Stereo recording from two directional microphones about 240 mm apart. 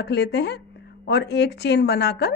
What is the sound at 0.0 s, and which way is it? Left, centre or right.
Speech, left.